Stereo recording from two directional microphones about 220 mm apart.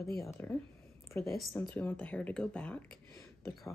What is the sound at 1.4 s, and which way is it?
Speech, centre (ahead or behind).